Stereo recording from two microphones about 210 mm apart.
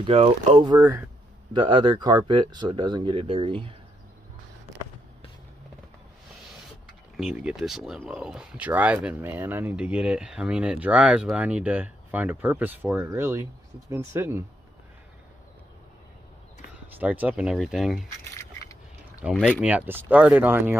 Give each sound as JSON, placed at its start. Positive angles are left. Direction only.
{"t": 0.0, "sound": "speech", "side_deg": -30}
{"t": 0.7, "sound": "speech", "side_deg": -10}
{"t": 7.2, "sound": "speech", "side_deg": 0}
{"t": 16.7, "sound": "speech", "side_deg": -5}
{"t": 19.3, "sound": "speech", "side_deg": 10}
{"t": 19.6, "sound": "speech", "side_deg": -10}